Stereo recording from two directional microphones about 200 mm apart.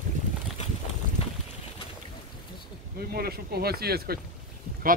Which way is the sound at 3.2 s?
50° right (ahead or behind).